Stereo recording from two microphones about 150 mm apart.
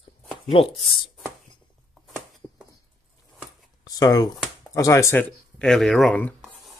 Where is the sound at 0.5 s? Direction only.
40° left (ahead or behind).